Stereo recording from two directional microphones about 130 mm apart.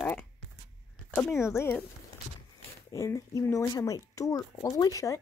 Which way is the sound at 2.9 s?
25° left (ahead or behind).